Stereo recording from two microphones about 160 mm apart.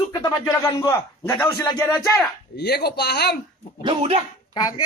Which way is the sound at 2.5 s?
90° left.